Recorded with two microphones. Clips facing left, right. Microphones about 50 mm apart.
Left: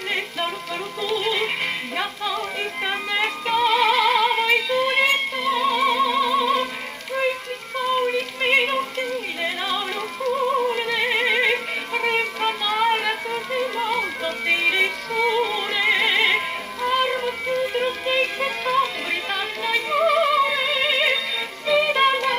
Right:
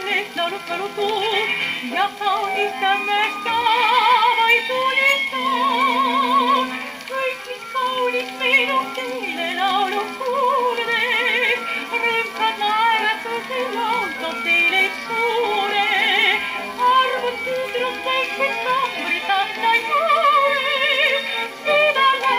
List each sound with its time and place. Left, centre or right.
1.0 s music: right
8.1 s yodeling: right
9.6 s music: right
15.5 s music: right